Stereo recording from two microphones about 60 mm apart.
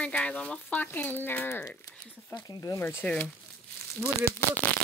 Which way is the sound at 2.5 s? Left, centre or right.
Left.